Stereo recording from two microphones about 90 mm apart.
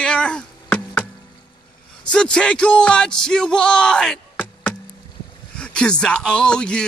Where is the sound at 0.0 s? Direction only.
10° left (ahead or behind).